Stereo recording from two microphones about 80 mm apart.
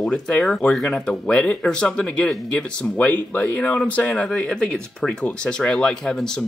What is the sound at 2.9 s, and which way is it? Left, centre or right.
Speech, left.